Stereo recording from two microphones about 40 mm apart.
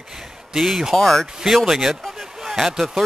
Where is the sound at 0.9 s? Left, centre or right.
Centre.